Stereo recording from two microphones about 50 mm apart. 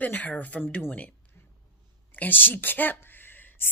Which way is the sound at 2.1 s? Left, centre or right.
Left.